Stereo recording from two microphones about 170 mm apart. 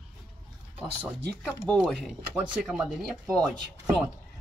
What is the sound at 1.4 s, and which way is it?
Speech, 5° left (ahead or behind).